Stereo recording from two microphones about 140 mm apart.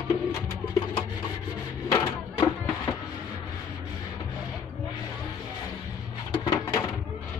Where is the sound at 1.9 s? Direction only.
25° left (ahead or behind).